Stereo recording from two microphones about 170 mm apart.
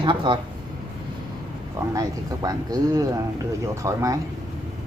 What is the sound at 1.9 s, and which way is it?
Speech, 20° right (ahead or behind).